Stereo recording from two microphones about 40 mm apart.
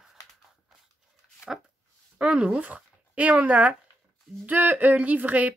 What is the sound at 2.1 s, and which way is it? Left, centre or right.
Speech, right.